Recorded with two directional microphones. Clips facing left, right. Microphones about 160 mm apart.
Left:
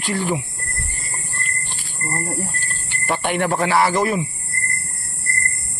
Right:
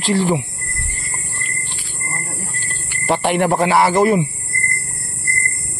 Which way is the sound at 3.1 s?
20° right (ahead or behind).